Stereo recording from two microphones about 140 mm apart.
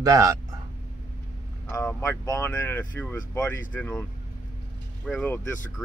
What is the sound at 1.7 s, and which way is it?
Speech, 15° left (ahead or behind).